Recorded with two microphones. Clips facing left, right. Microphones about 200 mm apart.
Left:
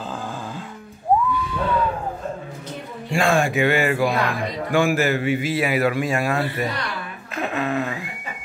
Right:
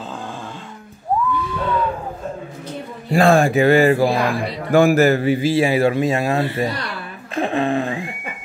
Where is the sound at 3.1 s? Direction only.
35° right (ahead or behind).